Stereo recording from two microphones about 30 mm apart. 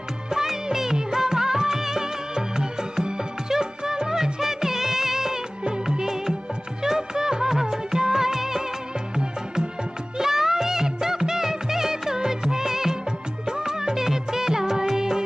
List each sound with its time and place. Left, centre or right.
0.3 s music of bollywood: centre
5.9 s music: centre
7.7 s music of bollywood: centre
10.1 s music: centre